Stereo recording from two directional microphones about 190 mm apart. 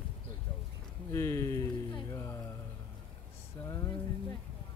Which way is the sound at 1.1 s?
15° left (ahead or behind).